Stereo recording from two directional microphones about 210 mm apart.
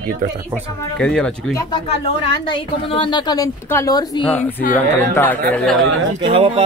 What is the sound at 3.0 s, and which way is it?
A woman's voice, 20° left (ahead or behind).